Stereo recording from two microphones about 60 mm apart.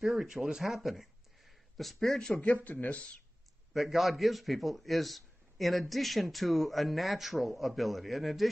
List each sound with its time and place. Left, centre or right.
0.0 s speech: centre
2.4 s speech: left
3.7 s a man's voice: centre